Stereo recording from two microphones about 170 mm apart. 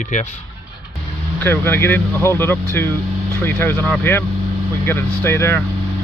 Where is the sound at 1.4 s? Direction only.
10° left (ahead or behind).